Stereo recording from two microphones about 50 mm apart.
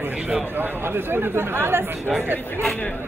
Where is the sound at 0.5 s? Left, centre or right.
Right.